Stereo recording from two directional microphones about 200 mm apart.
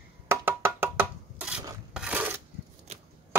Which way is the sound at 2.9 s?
30° right (ahead or behind).